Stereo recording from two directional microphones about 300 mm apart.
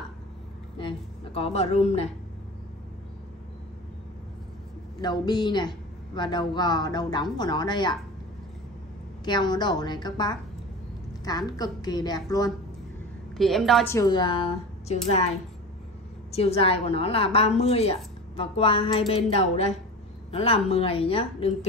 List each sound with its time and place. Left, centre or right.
0.7 s a woman's voice: centre
5.0 s a woman's voice: centre
9.2 s a woman's voice: centre
13.4 s a woman's voice: centre
16.3 s a woman's voice: centre